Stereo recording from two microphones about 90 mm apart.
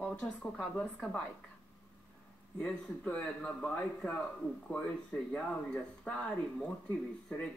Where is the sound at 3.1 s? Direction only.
10° left (ahead or behind).